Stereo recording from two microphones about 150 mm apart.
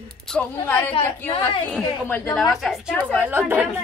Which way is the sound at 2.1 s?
10° left (ahead or behind).